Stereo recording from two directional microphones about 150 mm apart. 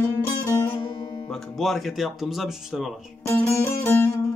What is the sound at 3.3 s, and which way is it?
Music, 15° left (ahead or behind).